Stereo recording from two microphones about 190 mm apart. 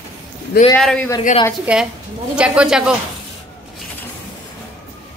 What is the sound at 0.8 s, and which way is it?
A woman's voice, 5° left (ahead or behind).